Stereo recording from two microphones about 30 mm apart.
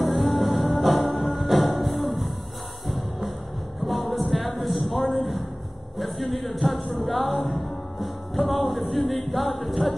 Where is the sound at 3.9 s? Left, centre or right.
Centre.